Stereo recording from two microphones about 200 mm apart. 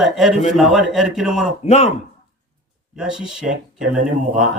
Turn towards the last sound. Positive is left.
turn(degrees=-40)  # may be behind; listen again after turning